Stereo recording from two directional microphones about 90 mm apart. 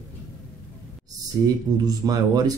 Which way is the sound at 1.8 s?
45° right (ahead or behind).